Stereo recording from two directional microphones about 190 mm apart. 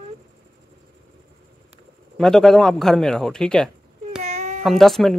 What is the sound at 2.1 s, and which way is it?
A man's voice, centre (ahead or behind).